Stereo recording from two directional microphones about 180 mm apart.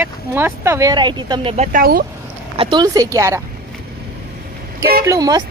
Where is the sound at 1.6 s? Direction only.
50° right (ahead or behind).